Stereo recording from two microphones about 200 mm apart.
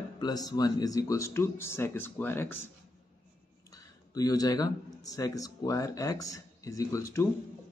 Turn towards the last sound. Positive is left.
turn(degrees=15)  # may be behind; listen again after turning